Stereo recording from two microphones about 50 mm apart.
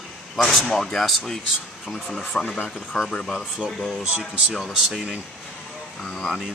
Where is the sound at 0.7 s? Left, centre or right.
Centre.